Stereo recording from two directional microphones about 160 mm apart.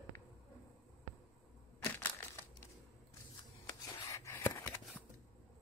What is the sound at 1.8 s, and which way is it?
Crushing, 10° left (ahead or behind).